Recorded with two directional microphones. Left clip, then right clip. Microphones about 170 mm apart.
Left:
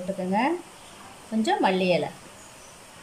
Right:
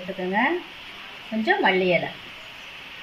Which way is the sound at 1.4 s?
10° left (ahead or behind).